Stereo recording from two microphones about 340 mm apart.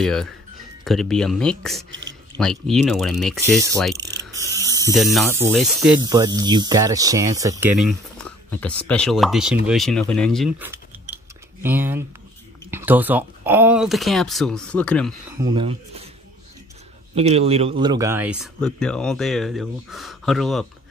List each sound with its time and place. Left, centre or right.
0.0 s speech: centre
1.9 s speech: right
2.3 s speech: centre
4.3 s a sound: centre
4.7 s speech: centre
6.0 s speech: centre
15.3 s speech: centre
17.1 s speech: centre